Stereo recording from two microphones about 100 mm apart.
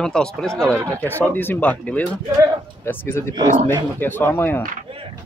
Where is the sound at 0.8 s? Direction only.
15° left (ahead or behind).